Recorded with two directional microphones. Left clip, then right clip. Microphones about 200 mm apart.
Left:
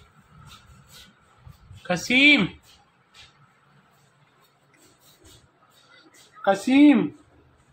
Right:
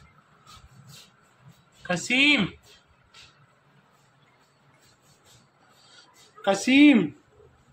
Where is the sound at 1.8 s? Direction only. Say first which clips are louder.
Left 4 dB; 15° left (ahead or behind).